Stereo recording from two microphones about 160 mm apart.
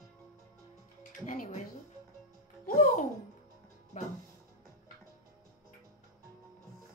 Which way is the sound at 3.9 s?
45° left (ahead or behind).